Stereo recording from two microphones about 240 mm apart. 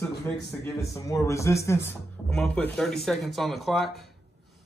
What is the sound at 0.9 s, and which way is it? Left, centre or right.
Speech, centre.